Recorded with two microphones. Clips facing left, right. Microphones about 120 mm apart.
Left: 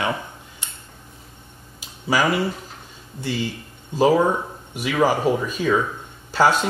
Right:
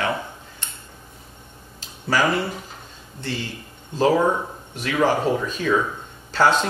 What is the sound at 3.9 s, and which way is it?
Speech, 10° left (ahead or behind).